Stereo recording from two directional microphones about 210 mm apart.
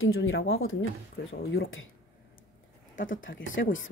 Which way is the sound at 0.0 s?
70° left (ahead or behind).